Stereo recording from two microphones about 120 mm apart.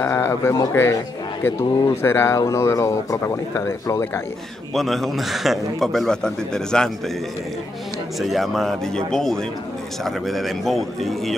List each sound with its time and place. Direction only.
0.0 s a man's voice: 20° left (ahead or behind)
4.7 s a man's voice: centre (ahead or behind)
8.2 s a man's voice: centre (ahead or behind)